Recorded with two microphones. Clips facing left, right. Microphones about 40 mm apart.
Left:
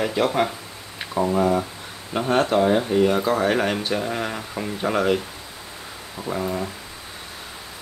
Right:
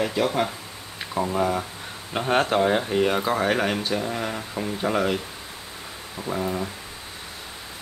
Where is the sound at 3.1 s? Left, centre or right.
Centre.